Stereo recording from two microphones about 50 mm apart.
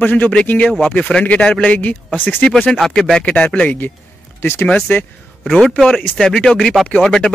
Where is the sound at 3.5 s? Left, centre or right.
Left.